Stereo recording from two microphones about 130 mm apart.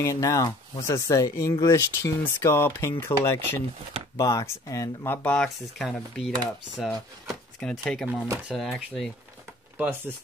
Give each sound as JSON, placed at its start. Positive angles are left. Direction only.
{"t": 0.0, "sound": "speech", "side_deg": 25}
{"t": 8.1, "sound": "speech", "side_deg": -15}
{"t": 8.5, "sound": "speech", "side_deg": 0}
{"t": 9.8, "sound": "speech", "side_deg": -15}